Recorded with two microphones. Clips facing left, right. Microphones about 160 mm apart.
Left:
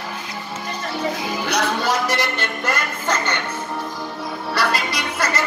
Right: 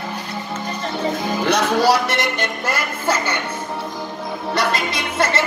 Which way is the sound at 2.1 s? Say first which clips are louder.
Right 1 dB; 20° right (ahead or behind).